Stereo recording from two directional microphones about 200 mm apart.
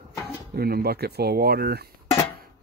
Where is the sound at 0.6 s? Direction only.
50° right (ahead or behind).